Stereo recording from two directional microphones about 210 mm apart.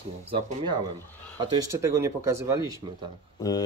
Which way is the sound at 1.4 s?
20° right (ahead or behind).